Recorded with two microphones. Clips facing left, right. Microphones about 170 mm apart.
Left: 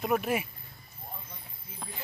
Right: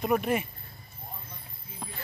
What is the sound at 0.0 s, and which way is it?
Speech, centre (ahead or behind).